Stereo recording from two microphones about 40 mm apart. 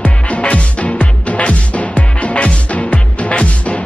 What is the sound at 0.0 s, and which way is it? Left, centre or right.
Music, left.